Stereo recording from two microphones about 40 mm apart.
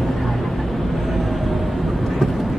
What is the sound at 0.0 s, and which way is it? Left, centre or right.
Vehicle, centre.